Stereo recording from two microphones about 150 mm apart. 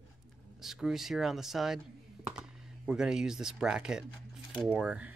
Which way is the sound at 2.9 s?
5° right (ahead or behind).